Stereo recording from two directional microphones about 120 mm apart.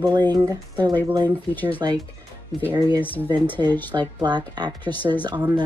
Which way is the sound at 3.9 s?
35° right (ahead or behind).